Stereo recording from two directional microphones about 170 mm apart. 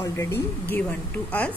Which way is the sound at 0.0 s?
15° left (ahead or behind).